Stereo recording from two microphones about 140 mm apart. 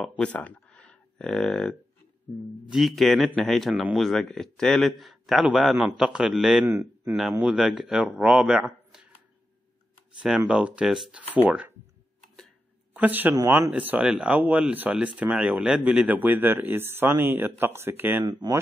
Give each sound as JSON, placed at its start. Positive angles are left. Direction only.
{"t": 0.2, "sound": "speech", "side_deg": 10}
{"t": 6.6, "sound": "speech", "side_deg": -20}
{"t": 7.1, "sound": "speech", "side_deg": -5}
{"t": 10.2, "sound": "speech", "side_deg": -5}
{"t": 12.9, "sound": "speech", "side_deg": -15}